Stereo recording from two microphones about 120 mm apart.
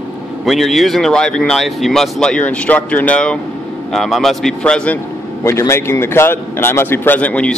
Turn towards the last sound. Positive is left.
turn(degrees=10)  # may be behind; listen again after turning